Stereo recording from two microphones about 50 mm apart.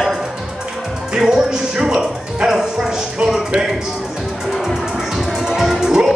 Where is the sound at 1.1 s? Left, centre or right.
Centre.